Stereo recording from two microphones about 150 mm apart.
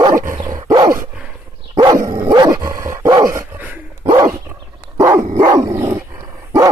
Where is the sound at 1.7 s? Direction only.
20° right (ahead or behind).